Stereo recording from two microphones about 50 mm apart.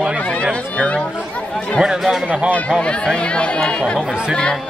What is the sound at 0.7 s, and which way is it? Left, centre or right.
Speech, left.